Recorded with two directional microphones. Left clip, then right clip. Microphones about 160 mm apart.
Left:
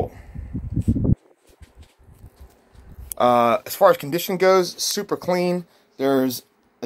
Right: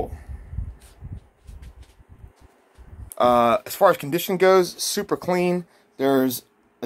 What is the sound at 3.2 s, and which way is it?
Speech, 5° left (ahead or behind).